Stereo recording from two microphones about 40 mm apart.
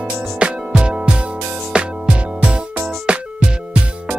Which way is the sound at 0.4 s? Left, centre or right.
Right.